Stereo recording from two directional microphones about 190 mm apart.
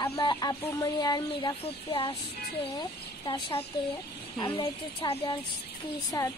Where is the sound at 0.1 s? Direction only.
25° left (ahead or behind).